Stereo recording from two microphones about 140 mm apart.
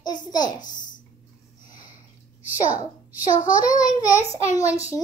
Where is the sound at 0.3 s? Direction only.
30° left (ahead or behind).